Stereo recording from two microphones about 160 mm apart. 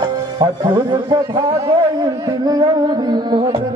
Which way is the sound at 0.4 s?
30° right (ahead or behind).